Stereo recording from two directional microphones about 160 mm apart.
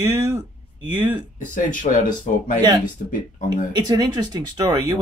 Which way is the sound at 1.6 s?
55° left (ahead or behind).